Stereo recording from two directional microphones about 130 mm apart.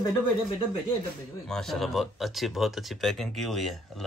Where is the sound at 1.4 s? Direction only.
5° left (ahead or behind).